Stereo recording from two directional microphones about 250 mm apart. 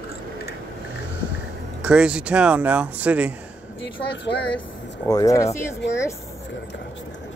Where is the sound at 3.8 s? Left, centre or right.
Left.